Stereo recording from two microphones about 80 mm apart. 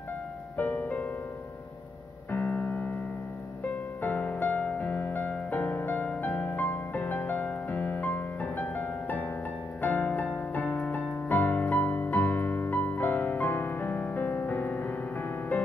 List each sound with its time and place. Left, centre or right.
0.6 s music: left
2.3 s music: left
4.0 s music: left